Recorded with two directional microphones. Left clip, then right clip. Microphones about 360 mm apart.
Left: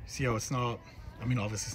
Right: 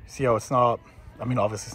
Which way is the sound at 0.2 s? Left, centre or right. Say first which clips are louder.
Right 12 dB; centre.